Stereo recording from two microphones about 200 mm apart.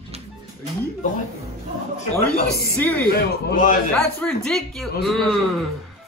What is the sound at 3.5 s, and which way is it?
Speech, 40° left (ahead or behind).